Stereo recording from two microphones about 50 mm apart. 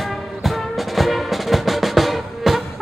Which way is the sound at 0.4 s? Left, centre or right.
Centre.